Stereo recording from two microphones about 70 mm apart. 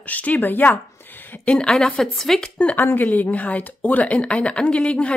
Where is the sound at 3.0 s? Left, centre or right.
Left.